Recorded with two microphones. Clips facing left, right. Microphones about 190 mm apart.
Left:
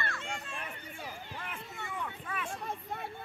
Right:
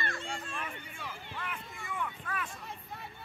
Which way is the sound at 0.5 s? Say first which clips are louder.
Right 1 dB; 40° left (ahead or behind).